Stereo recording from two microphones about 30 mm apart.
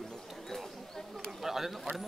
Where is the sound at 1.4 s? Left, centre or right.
Centre.